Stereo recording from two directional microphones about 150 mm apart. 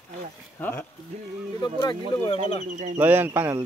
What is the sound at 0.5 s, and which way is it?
Speech, 15° left (ahead or behind).